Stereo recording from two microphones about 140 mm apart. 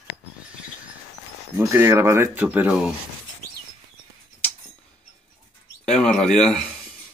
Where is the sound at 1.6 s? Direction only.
20° right (ahead or behind).